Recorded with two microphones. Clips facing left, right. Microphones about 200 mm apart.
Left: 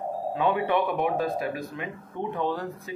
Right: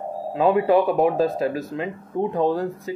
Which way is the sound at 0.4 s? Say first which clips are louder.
Right 8 dB; 35° right (ahead or behind).